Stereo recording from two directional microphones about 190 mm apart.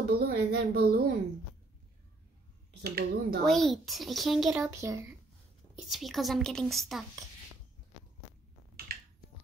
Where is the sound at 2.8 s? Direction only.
55° right (ahead or behind).